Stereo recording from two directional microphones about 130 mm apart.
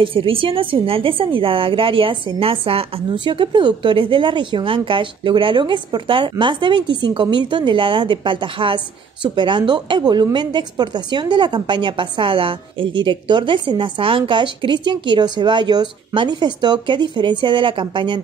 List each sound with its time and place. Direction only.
0.0 s a woman's voice: 40° right (ahead or behind)